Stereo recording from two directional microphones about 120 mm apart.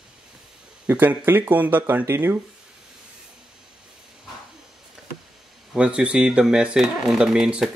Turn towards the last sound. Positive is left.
turn(degrees=-5)  # may be behind; listen again after turning